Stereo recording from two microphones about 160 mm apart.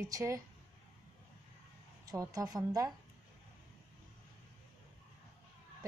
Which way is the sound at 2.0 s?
20° right (ahead or behind).